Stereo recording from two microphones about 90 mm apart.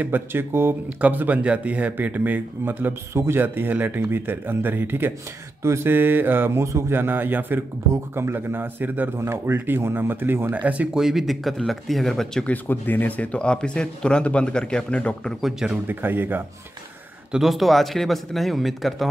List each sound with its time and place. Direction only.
0.0 s speech: 25° right (ahead or behind); by 12.4 s 5° left (ahead or behind)
12.4 s speech: 20° left (ahead or behind)
15.4 s speech: 5° right (ahead or behind)
15.9 s speech: 25° right (ahead or behind)
17.3 s a man's voice: centre (ahead or behind)